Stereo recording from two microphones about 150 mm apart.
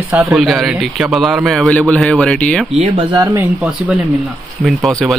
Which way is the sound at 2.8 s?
30° right (ahead or behind).